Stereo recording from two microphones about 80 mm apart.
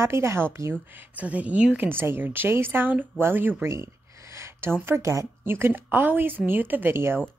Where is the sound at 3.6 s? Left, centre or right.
Right.